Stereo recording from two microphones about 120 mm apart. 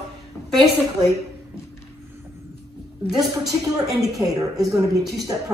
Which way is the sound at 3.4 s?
30° right (ahead or behind).